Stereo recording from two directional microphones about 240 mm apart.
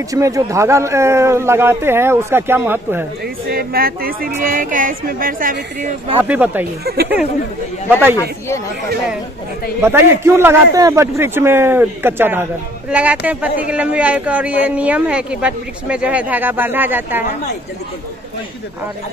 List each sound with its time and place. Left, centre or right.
0.1 s speech: centre
3.4 s speech: right
6.2 s speech: centre
6.8 s speech: right
9.8 s speech: centre